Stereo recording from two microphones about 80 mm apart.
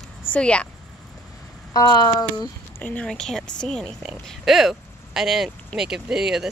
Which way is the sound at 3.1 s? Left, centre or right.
Centre.